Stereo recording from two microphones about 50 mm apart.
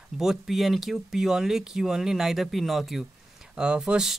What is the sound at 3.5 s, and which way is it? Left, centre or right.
Speech, centre.